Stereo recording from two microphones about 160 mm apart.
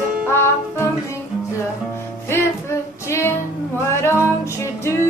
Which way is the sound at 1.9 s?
15° left (ahead or behind).